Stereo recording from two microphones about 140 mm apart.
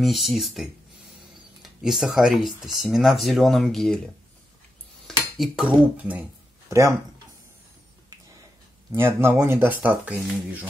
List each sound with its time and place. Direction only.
0.0 s speech: centre (ahead or behind)
5.0 s dishes: centre (ahead or behind)
6.7 s speech: 20° right (ahead or behind)
8.9 s speech: 15° right (ahead or behind)